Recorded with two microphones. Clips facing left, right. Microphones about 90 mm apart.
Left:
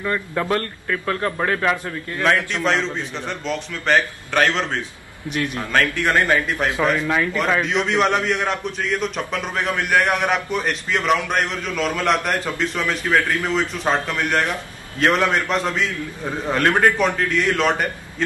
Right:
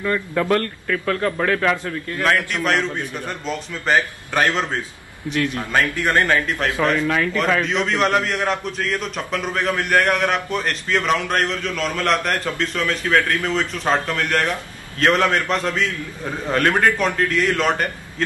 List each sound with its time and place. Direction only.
0.0 s a man's voice: 15° left (ahead or behind)
2.2 s a man's voice: centre (ahead or behind)
5.3 s a man's voice: 20° left (ahead or behind)
5.7 s a man's voice: 10° right (ahead or behind)
6.1 s a man's voice: 10° left (ahead or behind)